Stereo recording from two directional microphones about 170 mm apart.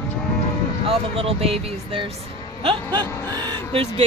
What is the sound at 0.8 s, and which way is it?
Speech, 35° right (ahead or behind).